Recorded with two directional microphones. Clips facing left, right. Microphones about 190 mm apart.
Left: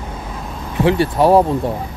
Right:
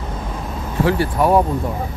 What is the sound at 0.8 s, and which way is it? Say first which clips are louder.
Speech: left 3 dB; 25° left (ahead or behind).